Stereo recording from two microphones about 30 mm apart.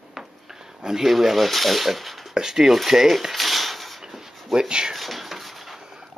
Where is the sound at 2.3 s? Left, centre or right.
Centre.